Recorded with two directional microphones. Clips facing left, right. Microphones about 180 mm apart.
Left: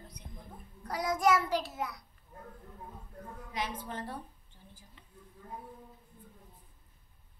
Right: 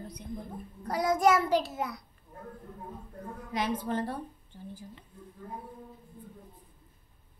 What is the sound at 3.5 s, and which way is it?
Speech, 80° right.